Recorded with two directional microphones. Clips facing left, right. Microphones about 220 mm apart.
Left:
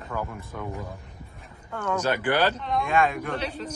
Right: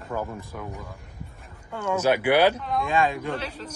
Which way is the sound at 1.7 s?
10° right (ahead or behind).